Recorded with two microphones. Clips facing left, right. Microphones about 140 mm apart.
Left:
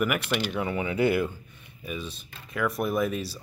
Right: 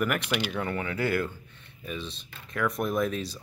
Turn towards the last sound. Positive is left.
turn(degrees=5)  # may be behind; listen again after turning